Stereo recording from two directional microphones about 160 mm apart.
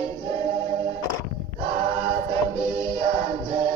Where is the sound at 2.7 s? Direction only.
25° left (ahead or behind).